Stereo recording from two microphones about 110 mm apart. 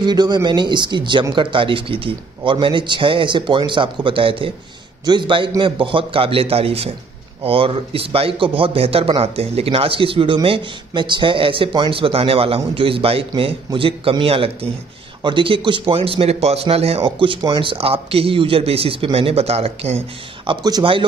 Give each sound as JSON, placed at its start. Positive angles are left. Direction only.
{"t": 0.0, "sound": "a man's voice", "side_deg": -40}
{"t": 20.4, "sound": "a man's voice", "side_deg": -35}